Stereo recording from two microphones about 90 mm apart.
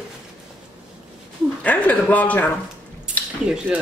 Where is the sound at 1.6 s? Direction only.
15° left (ahead or behind).